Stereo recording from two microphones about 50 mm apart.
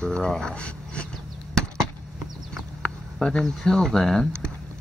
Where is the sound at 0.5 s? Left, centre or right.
Left.